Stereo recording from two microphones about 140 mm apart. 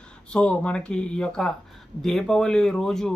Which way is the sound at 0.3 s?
10° left (ahead or behind).